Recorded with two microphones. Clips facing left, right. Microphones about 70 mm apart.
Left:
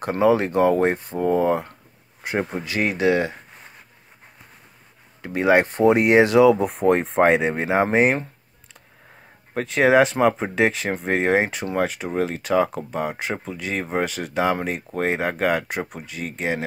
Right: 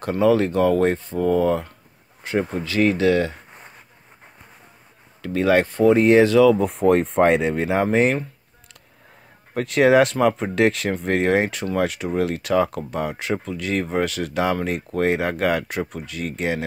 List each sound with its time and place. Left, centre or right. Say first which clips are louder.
0.2 s speech: even; left
5.2 s speech: even; left
6.5 s speech: right 1 dB; centre
9.5 s speech: right 1 dB; centre